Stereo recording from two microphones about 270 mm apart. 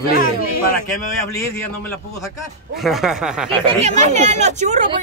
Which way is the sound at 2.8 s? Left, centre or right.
Centre.